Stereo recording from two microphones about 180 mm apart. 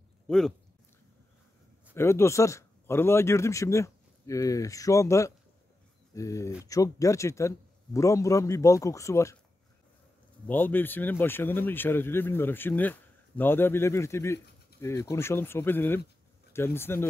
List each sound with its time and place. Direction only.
0.3 s speech: 5° left (ahead or behind)
2.0 s speech: 15° left (ahead or behind)
10.4 s speech: 10° left (ahead or behind)